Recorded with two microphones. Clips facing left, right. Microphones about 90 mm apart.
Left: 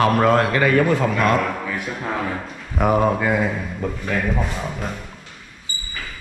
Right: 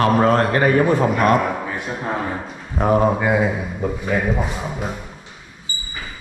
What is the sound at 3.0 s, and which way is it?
A man's voice, 10° right (ahead or behind).